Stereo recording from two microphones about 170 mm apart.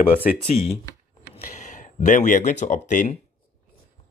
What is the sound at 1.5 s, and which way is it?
Speech, 45° left (ahead or behind).